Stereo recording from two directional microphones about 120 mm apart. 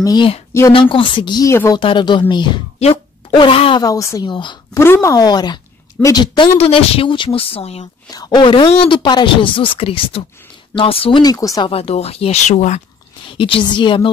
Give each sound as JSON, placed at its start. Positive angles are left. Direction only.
{"t": 0.0, "sound": "speech", "side_deg": 35}
{"t": 0.5, "sound": "a woman's voice", "side_deg": 25}
{"t": 0.7, "sound": "speech", "side_deg": 45}
{"t": 3.8, "sound": "a woman's voice", "side_deg": 25}
{"t": 4.3, "sound": "speech", "side_deg": 40}
{"t": 4.7, "sound": "a woman's voice", "side_deg": 20}
{"t": 5.1, "sound": "speech", "side_deg": 35}
{"t": 6.6, "sound": "speech", "side_deg": 55}
{"t": 8.1, "sound": "speech", "side_deg": 35}
{"t": 11.2, "sound": "a woman's voice", "side_deg": 30}
{"t": 11.7, "sound": "speech", "side_deg": 60}
{"t": 13.4, "sound": "speech", "side_deg": 45}